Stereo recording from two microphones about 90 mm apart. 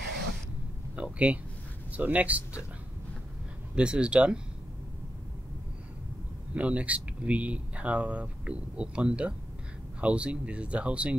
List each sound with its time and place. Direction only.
0.9 s a sound: 15° right (ahead or behind)
1.9 s speech: 15° right (ahead or behind)
3.7 s speech: 10° right (ahead or behind)
6.5 s speech: 15° right (ahead or behind)